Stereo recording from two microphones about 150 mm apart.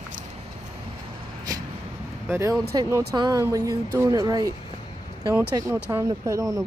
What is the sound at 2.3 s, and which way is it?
Speech, 20° right (ahead or behind).